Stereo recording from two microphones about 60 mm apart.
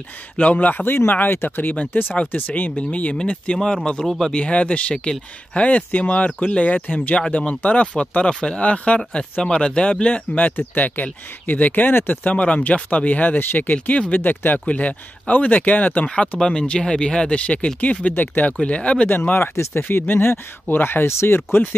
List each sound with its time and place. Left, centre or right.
0.4 s speech: left
12.4 s speech: left
18.6 s speech: centre
19.0 s speech: left
19.5 s speech: left
19.9 s speech: left